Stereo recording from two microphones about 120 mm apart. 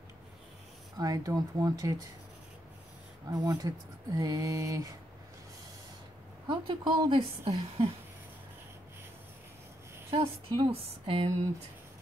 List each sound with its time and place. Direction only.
0.9 s speech: 30° right (ahead or behind)
3.3 s speech: 35° right (ahead or behind)
6.5 s a woman's voice: 45° right (ahead or behind)
10.1 s a woman's voice: 35° right (ahead or behind)
10.7 s a woman's voice: 50° right (ahead or behind)